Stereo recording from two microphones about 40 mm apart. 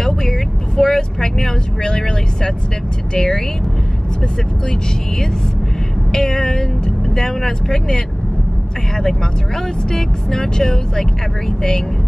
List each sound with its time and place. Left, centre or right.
0.0 s vehicle: centre
3.2 s speech: centre
6.1 s speech: centre
9.9 s speech: centre